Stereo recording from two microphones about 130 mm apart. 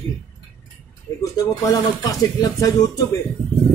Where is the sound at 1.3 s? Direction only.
25° left (ahead or behind).